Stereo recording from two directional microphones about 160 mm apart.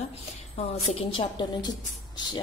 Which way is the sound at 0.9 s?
35° left (ahead or behind).